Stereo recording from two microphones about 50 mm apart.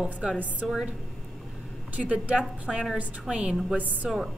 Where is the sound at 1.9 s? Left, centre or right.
Right.